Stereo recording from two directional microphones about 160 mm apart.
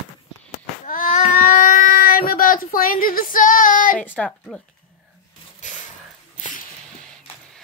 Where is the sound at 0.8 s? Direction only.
55° left (ahead or behind).